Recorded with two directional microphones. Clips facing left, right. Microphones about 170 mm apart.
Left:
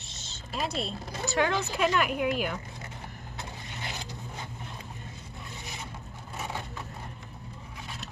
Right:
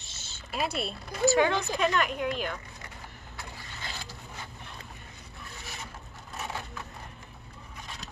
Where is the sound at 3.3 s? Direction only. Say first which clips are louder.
Left 2 dB; 20° left (ahead or behind).